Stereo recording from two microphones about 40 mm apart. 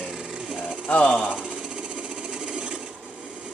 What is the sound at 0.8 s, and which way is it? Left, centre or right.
Speech, left.